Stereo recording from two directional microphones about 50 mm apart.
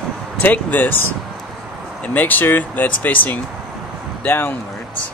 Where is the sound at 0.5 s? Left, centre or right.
Left.